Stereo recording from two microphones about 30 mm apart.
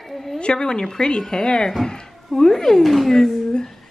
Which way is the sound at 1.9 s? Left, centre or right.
Centre.